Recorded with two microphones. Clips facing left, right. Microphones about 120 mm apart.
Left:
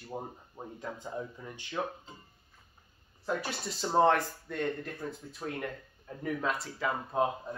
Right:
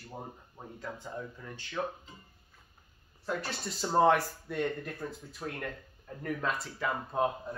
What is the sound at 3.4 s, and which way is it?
Speech, centre (ahead or behind).